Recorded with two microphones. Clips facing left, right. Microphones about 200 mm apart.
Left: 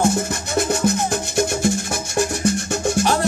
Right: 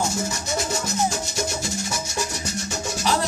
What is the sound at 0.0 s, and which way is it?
Music, 55° left (ahead or behind).